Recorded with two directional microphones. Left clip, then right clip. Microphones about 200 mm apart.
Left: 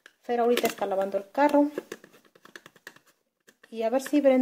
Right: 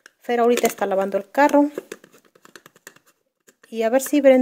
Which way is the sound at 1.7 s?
20° right (ahead or behind).